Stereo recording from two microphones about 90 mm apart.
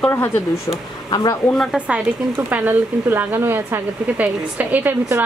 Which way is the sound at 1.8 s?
15° right (ahead or behind).